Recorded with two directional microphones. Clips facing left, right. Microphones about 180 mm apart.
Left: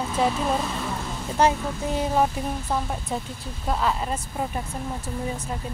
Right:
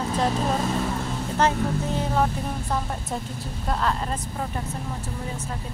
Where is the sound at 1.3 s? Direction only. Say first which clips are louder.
Left 1 dB; 10° left (ahead or behind).